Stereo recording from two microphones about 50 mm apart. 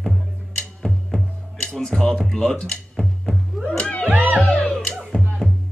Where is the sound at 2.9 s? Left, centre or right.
Centre.